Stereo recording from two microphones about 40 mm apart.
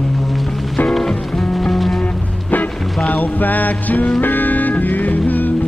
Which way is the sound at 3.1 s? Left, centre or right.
Left.